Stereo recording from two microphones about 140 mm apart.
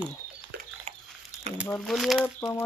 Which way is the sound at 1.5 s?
50° right (ahead or behind).